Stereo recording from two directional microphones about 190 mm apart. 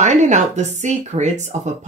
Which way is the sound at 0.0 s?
40° right (ahead or behind).